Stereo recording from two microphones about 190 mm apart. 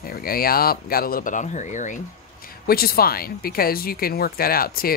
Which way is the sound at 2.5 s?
50° left (ahead or behind).